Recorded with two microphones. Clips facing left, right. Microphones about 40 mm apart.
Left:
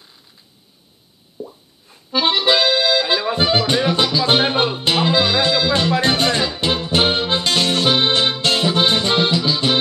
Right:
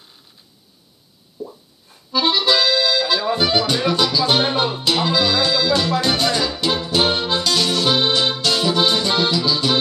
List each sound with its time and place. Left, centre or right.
1.4 s plop: left
2.1 s accordion: left